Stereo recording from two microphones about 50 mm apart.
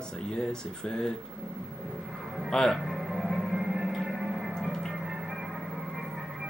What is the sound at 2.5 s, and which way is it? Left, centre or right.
Speech, centre.